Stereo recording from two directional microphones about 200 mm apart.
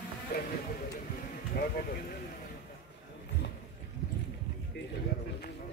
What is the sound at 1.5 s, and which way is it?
Speech, 50° left (ahead or behind).